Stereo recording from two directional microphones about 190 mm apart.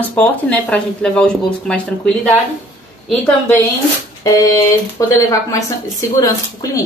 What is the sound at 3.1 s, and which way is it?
Speech, 10° left (ahead or behind).